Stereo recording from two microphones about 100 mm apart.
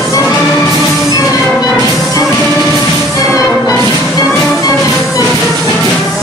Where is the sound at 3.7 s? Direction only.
35° left (ahead or behind).